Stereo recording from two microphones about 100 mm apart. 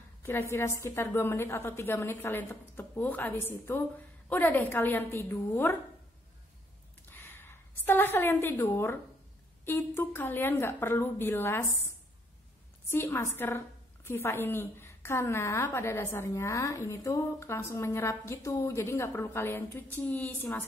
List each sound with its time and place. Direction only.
0.2 s a woman's voice: 25° left (ahead or behind)
7.1 s a sound: 20° left (ahead or behind)
9.7 s a woman's voice: 20° left (ahead or behind)
12.9 s a woman's voice: 25° left (ahead or behind)